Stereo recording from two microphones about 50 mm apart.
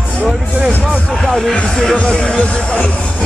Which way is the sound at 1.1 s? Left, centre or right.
Centre.